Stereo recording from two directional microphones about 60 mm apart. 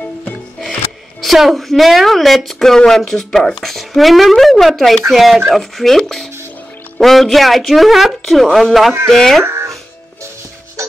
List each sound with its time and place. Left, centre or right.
1.2 s a woman's voice: centre
9.4 s music: right